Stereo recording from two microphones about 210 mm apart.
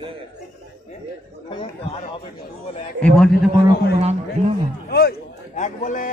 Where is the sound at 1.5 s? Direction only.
25° left (ahead or behind).